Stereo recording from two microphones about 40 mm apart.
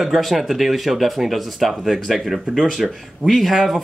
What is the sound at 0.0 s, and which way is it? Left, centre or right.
Speech, centre.